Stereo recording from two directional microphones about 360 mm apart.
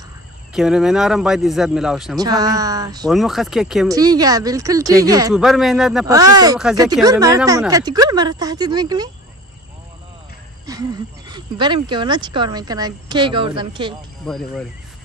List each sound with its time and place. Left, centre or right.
0.5 s speech: centre
10.7 s speech: centre
14.2 s speech: centre